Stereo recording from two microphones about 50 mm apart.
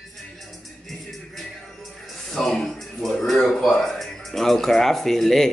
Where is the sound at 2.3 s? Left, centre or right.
Centre.